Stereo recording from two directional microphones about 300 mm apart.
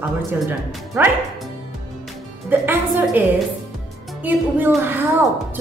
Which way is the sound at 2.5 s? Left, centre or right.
Centre.